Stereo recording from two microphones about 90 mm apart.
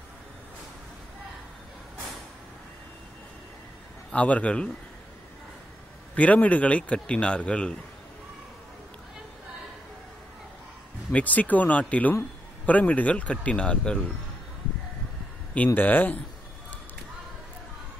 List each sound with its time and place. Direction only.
4.1 s speech: 15° left (ahead or behind)
6.1 s speech: 15° left (ahead or behind)
11.1 s speech: 15° left (ahead or behind)
15.5 s speech: 20° left (ahead or behind)